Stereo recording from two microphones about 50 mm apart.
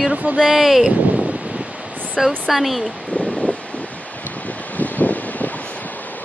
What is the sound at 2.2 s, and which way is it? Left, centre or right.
Speech, centre.